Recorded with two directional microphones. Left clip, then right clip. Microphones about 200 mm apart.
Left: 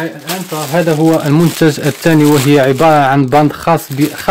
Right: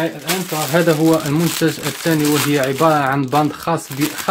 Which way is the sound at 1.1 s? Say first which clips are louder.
Left 5 dB; 35° left (ahead or behind).